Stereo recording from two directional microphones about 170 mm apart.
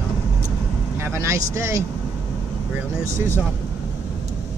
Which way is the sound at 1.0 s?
15° right (ahead or behind).